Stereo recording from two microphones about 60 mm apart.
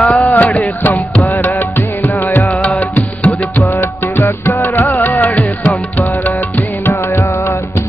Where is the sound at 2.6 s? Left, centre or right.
Left.